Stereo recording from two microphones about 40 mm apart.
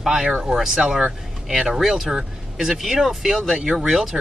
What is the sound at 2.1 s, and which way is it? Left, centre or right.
Vehicle, centre.